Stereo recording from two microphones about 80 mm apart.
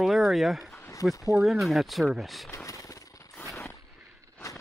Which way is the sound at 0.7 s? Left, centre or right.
Left.